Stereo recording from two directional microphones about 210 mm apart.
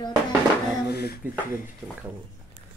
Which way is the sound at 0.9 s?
50° left (ahead or behind).